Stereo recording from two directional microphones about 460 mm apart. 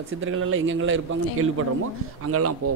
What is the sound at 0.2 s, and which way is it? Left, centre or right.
A man's voice, right.